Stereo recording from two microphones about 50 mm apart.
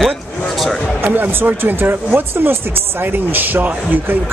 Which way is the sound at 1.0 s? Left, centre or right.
Right.